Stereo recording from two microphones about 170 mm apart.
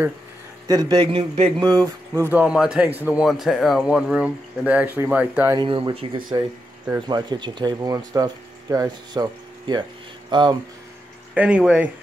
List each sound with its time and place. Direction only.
0.7 s speech: 25° right (ahead or behind)
1.6 s speech: 20° right (ahead or behind)
5.5 s speech: 30° right (ahead or behind)
11.3 s speech: 5° right (ahead or behind)